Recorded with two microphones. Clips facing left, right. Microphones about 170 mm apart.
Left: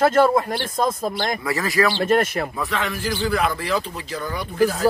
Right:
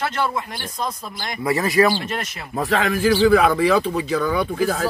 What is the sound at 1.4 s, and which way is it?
Speech, 20° right (ahead or behind).